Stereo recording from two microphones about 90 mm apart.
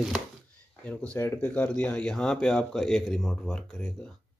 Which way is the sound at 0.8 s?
15° left (ahead or behind).